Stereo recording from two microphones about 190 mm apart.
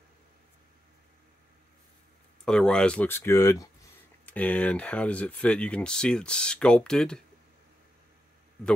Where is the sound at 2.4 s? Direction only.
5° left (ahead or behind).